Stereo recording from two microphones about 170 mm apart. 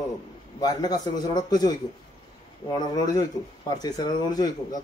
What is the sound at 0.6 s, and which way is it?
Speech, 20° left (ahead or behind).